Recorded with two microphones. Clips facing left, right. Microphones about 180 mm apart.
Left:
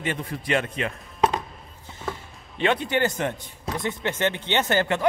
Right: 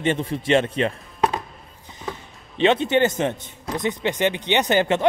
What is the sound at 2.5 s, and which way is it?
Speech, 20° right (ahead or behind).